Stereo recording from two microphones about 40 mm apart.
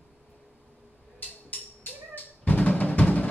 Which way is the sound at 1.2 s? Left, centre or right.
Left.